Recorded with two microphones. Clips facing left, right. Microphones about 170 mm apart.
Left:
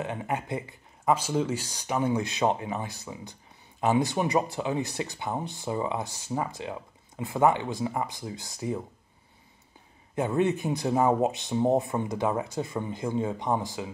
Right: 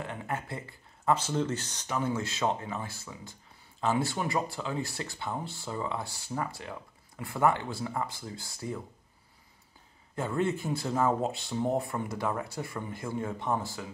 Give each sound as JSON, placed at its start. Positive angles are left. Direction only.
{"t": 0.0, "sound": "speech", "side_deg": 20}
{"t": 10.1, "sound": "speech", "side_deg": 20}